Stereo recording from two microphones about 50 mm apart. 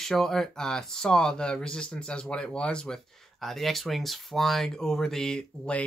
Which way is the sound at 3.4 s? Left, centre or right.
Centre.